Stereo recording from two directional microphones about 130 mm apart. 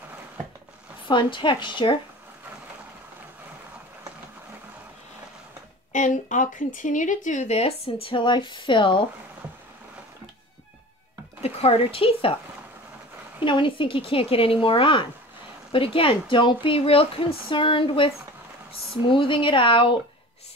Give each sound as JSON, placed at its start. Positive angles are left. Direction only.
{"t": 1.0, "sound": "speech", "side_deg": 40}
{"t": 5.9, "sound": "speech", "side_deg": 75}
{"t": 11.4, "sound": "a woman's voice", "side_deg": 50}
{"t": 13.4, "sound": "a woman's voice", "side_deg": 40}